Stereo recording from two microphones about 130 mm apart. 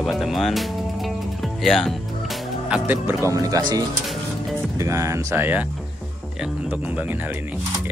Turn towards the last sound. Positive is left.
turn(degrees=-10)  # may be behind; listen again after turning